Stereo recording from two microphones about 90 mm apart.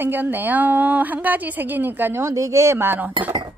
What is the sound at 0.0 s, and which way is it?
A woman's voice, 20° right (ahead or behind).